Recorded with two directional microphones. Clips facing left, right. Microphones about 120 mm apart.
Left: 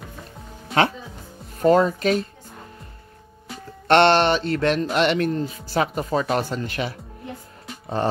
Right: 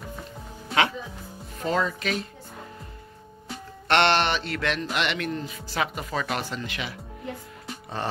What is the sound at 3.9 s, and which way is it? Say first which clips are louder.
Speech: left 6 dB; 40° left (ahead or behind).